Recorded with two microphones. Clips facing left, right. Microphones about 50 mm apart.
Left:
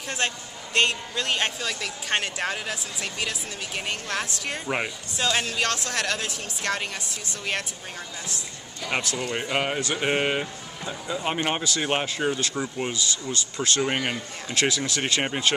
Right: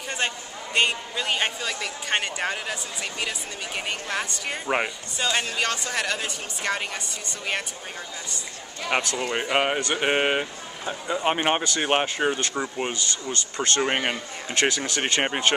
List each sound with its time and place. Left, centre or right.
0.2 s a man's voice: centre
8.9 s speech: right
12.9 s speech: right